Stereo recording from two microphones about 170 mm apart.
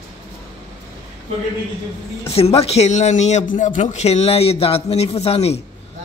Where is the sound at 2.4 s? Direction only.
35° left (ahead or behind).